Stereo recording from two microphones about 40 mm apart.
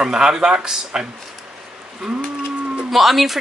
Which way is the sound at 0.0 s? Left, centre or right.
Centre.